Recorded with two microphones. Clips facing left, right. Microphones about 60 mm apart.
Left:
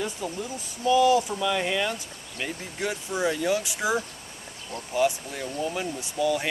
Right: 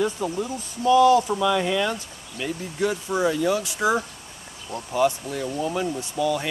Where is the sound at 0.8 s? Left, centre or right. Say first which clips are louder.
Right 4 dB; centre.